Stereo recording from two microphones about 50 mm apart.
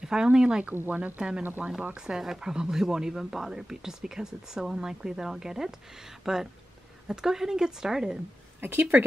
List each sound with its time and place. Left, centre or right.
0.0 s speech: centre
0.9 s speech: right
2.0 s speech: centre
8.5 s a woman's voice: right